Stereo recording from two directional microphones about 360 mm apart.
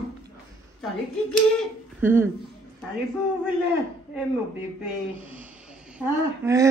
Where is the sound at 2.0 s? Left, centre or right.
Centre.